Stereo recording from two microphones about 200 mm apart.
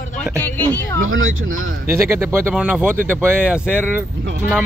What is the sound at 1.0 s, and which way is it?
Speech, 85° right.